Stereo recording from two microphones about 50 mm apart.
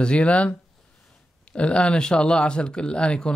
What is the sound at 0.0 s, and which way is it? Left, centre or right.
Speech, left.